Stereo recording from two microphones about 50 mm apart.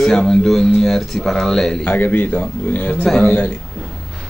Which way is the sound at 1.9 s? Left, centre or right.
Left.